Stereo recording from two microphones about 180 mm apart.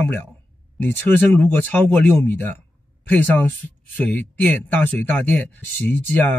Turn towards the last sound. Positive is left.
turn(degrees=10)  # may be behind; listen again after turning